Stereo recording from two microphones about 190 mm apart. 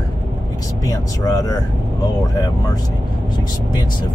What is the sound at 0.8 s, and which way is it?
Speech, 20° left (ahead or behind).